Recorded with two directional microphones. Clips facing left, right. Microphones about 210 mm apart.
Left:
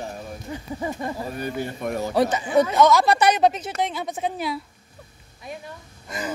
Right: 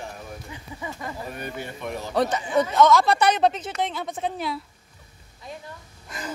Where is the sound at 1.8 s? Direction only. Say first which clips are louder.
Left 6 dB; 50° left (ahead or behind).